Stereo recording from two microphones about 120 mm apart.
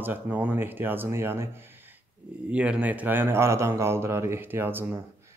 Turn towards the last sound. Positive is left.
turn(degrees=-20)  # may be behind; listen again after turning